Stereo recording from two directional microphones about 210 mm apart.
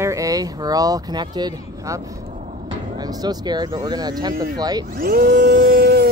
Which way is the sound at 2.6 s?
20° right (ahead or behind).